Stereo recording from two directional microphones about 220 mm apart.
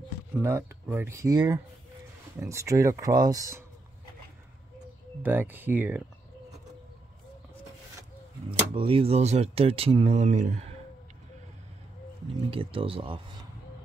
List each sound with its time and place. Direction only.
0.4 s speech: 10° right (ahead or behind)
5.2 s speech: 10° right (ahead or behind)
8.5 s speech: 25° right (ahead or behind)
12.4 s speech: 25° right (ahead or behind)